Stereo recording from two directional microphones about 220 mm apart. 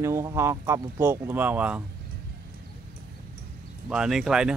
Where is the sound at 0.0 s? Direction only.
15° right (ahead or behind).